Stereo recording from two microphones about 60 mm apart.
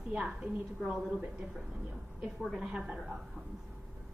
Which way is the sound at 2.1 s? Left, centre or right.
Centre.